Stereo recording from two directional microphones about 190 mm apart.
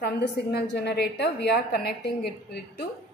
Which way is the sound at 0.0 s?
55° left (ahead or behind).